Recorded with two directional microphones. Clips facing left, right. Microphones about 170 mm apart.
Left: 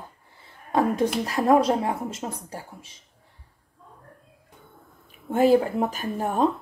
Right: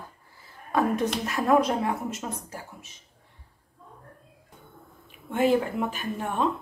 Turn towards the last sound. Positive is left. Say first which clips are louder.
# left 4 dB
turn(degrees=40)  # may be behind; listen again after turning